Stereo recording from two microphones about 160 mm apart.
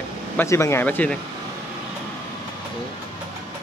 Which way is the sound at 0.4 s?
15° left (ahead or behind).